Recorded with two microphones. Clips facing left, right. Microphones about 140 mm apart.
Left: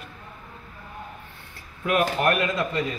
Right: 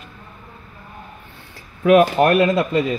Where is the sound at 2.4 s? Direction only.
70° right (ahead or behind).